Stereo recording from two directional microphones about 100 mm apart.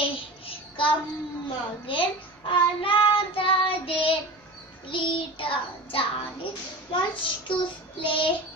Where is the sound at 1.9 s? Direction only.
60° left (ahead or behind).